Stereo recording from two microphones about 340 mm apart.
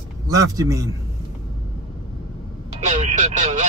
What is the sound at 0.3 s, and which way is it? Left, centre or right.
Speech, centre.